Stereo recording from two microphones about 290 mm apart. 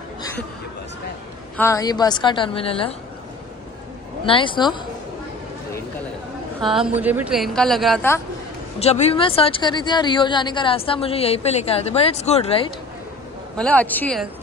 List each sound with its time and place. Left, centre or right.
1.6 s a woman's voice: centre
4.3 s a woman's voice: centre
6.6 s speech: centre
8.7 s speech: left
13.6 s speech: centre